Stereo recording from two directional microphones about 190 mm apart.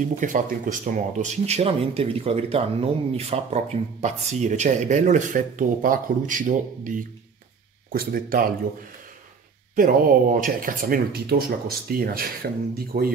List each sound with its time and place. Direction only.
0.2 s speech: 45° right (ahead or behind)
9.8 s speech: 50° right (ahead or behind)